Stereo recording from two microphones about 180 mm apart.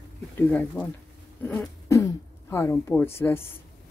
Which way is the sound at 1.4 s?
5° left (ahead or behind).